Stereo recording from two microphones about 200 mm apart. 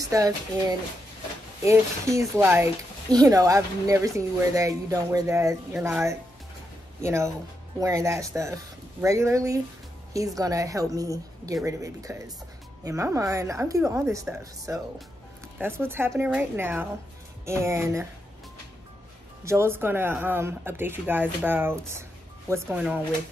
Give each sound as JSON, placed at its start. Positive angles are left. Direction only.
{"t": 0.1, "sound": "speech", "side_deg": -15}
{"t": 19.4, "sound": "speech", "side_deg": -10}